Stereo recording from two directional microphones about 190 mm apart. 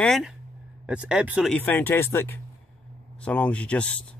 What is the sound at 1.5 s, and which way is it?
Speech, 10° left (ahead or behind).